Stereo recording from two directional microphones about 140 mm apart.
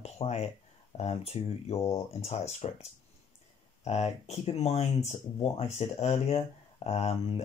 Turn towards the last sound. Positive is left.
turn(degrees=50)  # may be behind; listen again after turning